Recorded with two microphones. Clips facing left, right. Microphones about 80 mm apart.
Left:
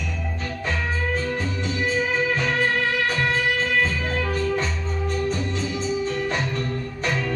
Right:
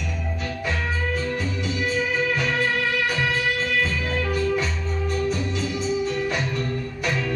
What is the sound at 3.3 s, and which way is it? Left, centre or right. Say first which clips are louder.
Music: left 2 dB; left.